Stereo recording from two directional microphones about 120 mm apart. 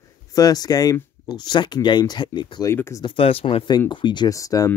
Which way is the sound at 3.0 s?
50° left (ahead or behind).